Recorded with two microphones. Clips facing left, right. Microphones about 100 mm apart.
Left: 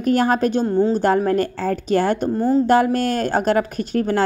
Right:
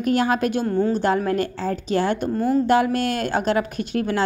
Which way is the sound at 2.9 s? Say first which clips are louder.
Left 3 dB; 40° left (ahead or behind).